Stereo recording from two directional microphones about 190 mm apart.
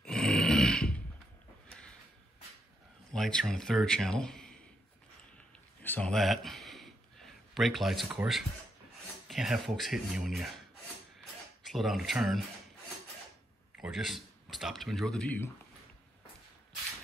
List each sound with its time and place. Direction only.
0.0 s a sound: 5° left (ahead or behind)
3.1 s a man's voice: 5° left (ahead or behind)
5.8 s a sound: 10° left (ahead or behind)
7.5 s speech: centre (ahead or behind)
11.6 s speech: centre (ahead or behind)
13.7 s speech: 5° right (ahead or behind)